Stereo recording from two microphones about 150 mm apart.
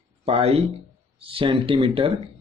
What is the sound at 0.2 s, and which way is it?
Speech, 40° right (ahead or behind).